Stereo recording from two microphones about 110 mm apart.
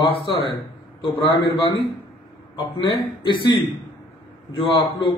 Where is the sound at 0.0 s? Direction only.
50° left (ahead or behind).